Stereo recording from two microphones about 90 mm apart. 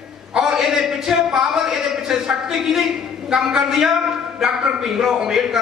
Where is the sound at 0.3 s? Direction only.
5° right (ahead or behind).